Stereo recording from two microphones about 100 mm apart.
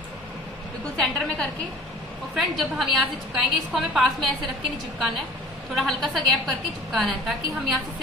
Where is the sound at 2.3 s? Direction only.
Centre (ahead or behind).